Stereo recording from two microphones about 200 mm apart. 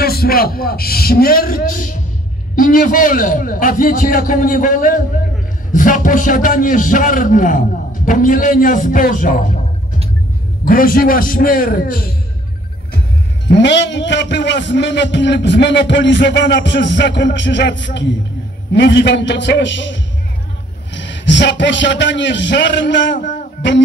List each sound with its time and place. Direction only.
0.0 s a man's voice: 50° left (ahead or behind)
10.6 s a man's voice: 45° left (ahead or behind)
13.5 s a man's voice: 60° left (ahead or behind)